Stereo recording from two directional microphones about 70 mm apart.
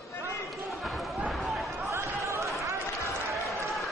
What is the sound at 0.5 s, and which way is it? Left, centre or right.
Basketball bounce, centre.